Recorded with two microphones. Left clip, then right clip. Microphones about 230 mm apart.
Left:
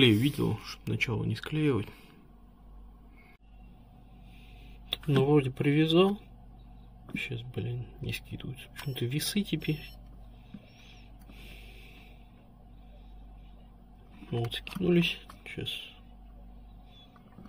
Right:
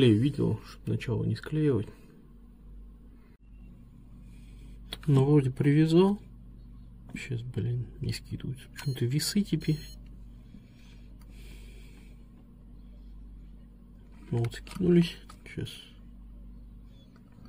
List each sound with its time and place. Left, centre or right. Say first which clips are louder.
0.0 s speech: even; centre
4.8 s speech: left 1 dB; right
7.2 s speech: left 2 dB; right
14.3 s speech: left 1 dB; right